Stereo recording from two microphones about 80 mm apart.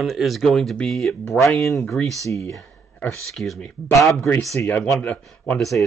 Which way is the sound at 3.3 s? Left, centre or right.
Centre.